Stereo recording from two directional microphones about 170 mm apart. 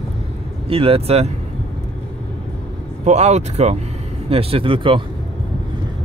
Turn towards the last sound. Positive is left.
turn(degrees=-30)  # may be behind; listen again after turning